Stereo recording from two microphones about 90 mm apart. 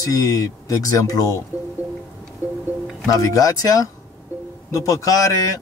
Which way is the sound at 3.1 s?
40° left (ahead or behind).